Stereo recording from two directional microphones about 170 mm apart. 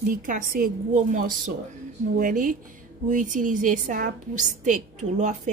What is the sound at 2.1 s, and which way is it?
A woman's voice, 55° right (ahead or behind).